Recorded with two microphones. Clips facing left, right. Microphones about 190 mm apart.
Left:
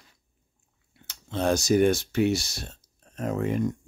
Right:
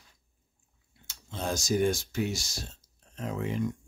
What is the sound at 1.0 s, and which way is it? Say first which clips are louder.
Speech: left 8 dB; 65° left (ahead or behind).